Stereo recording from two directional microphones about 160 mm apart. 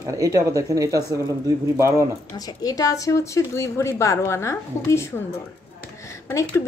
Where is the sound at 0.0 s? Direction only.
20° right (ahead or behind).